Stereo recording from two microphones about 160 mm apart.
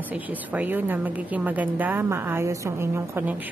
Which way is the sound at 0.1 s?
10° right (ahead or behind).